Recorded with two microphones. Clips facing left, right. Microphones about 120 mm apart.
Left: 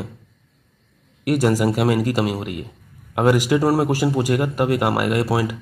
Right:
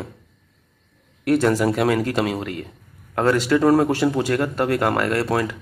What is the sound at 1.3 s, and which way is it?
A man's voice, 10° left (ahead or behind).